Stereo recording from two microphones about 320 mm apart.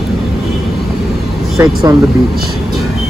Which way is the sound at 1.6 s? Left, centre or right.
Centre.